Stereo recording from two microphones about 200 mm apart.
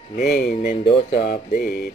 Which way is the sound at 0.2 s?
45° left (ahead or behind).